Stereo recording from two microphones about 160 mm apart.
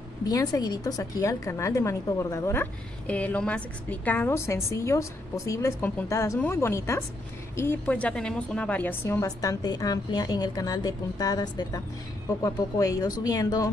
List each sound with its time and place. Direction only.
0.3 s a woman's voice: 20° left (ahead or behind)